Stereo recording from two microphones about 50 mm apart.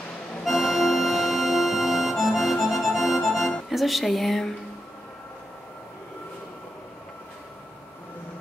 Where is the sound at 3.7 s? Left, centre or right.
Centre.